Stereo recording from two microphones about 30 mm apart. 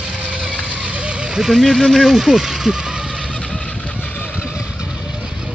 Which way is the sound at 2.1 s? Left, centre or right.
Centre.